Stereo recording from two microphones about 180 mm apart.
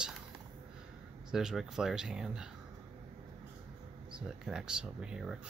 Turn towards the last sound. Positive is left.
turn(degrees=-5)  # may be behind; listen again after turning